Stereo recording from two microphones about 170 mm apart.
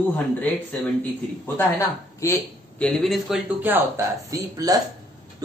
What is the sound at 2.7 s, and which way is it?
Speech, 5° left (ahead or behind).